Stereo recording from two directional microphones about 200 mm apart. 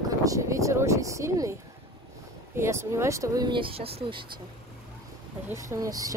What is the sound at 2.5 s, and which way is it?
Speech, 15° right (ahead or behind).